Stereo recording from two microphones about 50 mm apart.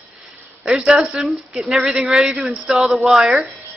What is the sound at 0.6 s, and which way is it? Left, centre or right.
A woman's voice, centre.